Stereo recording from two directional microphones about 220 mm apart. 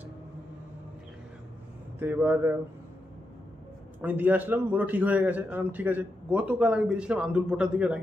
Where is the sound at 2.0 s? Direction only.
10° right (ahead or behind).